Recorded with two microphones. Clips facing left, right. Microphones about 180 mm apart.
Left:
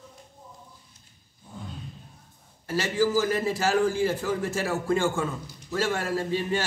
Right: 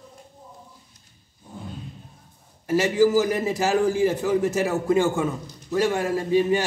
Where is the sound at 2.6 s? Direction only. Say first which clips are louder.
Right 6 dB; 15° right (ahead or behind).